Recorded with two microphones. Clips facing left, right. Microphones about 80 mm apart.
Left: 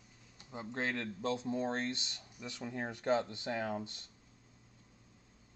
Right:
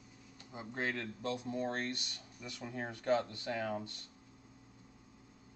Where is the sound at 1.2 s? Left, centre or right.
Left.